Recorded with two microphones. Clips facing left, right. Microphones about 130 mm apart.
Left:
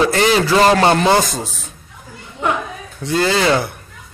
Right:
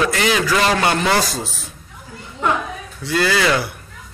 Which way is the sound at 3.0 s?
25° left (ahead or behind).